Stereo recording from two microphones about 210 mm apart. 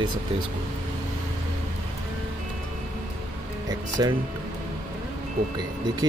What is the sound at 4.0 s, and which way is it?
Speech, 20° right (ahead or behind).